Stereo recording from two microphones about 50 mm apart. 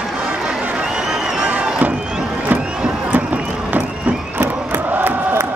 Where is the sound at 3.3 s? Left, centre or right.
Right.